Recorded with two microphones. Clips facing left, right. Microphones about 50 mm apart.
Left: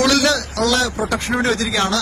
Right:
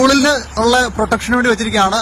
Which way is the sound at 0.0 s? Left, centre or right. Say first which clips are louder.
Right 5 dB; right.